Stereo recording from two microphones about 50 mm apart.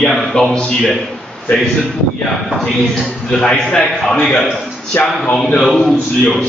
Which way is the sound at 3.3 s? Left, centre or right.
Centre.